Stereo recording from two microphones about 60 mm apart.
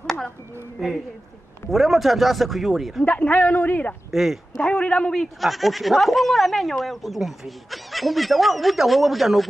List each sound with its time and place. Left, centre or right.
0.0 s a sound: centre
0.8 s speech: centre
3.1 s a man's voice: left
4.1 s speech: centre
4.6 s a man's voice: centre
5.4 s speech: centre